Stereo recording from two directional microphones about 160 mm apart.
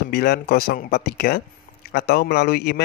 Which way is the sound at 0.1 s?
75° left (ahead or behind).